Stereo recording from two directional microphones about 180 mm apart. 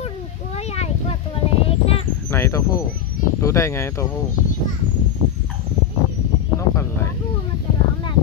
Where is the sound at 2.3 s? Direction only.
15° left (ahead or behind).